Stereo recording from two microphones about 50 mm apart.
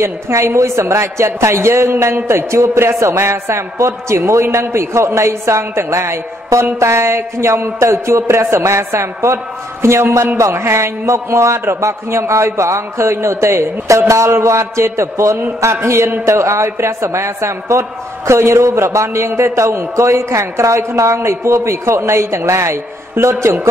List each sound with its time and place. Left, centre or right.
0.0 s a woman's voice: right
4.3 s a woman's voice: right
15.6 s a woman's voice: right